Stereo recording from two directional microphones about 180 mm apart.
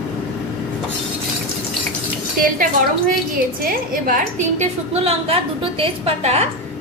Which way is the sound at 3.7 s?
50° right (ahead or behind).